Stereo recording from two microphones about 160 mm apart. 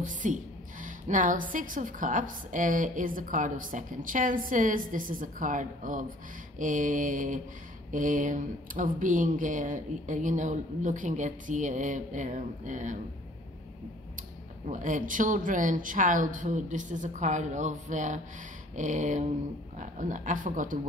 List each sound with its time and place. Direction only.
0.0 s a woman's voice: 55° right (ahead or behind)
14.7 s speech: 55° right (ahead or behind)